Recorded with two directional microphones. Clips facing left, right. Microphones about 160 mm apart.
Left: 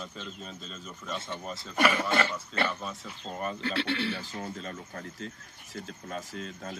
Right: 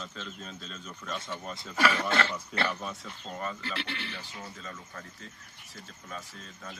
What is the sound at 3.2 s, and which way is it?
Speech, 20° left (ahead or behind).